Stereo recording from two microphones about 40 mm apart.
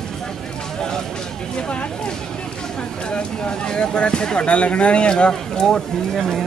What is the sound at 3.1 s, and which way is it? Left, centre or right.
Speech, left.